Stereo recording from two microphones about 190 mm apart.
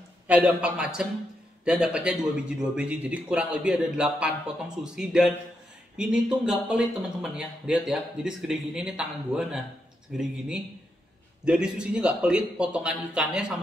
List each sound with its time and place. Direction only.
0.3 s a man's voice: 5° right (ahead or behind)